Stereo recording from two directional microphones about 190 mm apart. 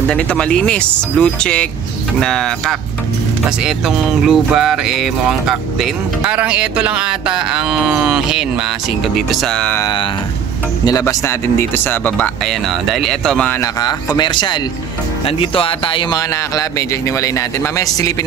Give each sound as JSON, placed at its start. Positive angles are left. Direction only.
{"t": 0.1, "sound": "speech", "side_deg": 5}
{"t": 10.9, "sound": "a man's voice", "side_deg": 15}